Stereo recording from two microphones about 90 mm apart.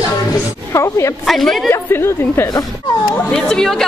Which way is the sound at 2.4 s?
50° left (ahead or behind).